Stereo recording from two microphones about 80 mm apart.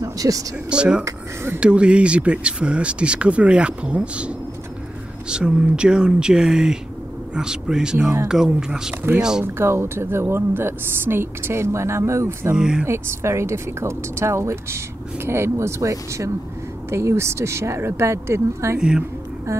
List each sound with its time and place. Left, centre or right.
0.0 s a sound: right
0.7 s speech: centre
1.0 s speech: right
1.6 s speech: centre
5.3 s speech: centre
9.4 s speech: right
12.5 s speech: centre
12.8 s speech: right
18.8 s speech: centre